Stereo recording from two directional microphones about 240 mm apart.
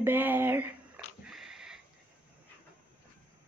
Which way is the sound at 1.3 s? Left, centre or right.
Centre.